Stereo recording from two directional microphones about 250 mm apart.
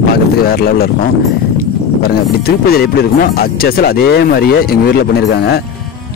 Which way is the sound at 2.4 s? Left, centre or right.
Left.